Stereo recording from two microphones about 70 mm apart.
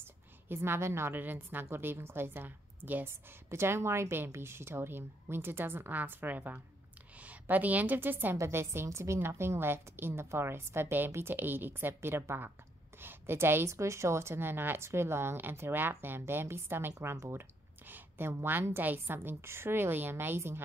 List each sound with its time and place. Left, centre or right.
0.0 s a sound: right
1.1 s a woman's voice: right
3.4 s a woman's voice: right